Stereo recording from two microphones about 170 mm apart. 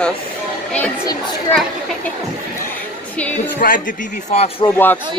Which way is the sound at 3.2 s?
10° left (ahead or behind).